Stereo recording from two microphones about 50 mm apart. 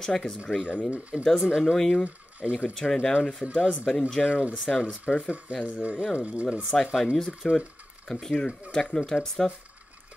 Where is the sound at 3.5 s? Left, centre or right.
Left.